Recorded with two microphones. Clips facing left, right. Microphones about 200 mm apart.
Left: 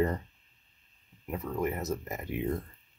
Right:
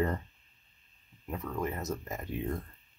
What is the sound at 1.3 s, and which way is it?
Speech, 15° left (ahead or behind).